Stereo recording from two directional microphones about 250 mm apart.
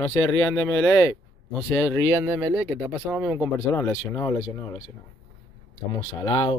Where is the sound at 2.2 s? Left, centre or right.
Centre.